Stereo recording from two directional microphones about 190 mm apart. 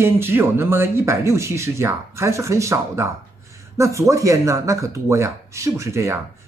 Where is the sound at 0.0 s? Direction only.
10° right (ahead or behind).